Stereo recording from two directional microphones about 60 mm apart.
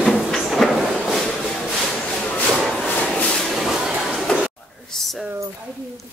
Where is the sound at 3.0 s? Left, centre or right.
Left.